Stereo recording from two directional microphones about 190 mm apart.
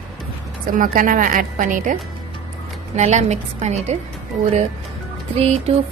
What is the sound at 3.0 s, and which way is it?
Speech, 40° right (ahead or behind).